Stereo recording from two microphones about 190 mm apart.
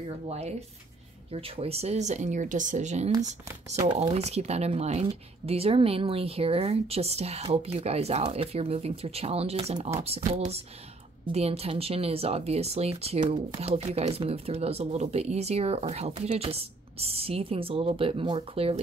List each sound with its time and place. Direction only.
0.3 s speech: 35° right (ahead or behind)